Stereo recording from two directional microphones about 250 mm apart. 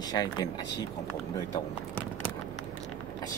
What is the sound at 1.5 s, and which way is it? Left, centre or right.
Speech, centre.